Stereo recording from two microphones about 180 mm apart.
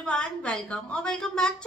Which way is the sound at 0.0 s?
5° left (ahead or behind).